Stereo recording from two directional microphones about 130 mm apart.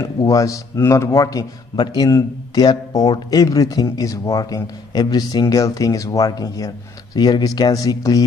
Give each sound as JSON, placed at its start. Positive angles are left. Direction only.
{"t": 0.0, "sound": "a man's voice", "side_deg": 25}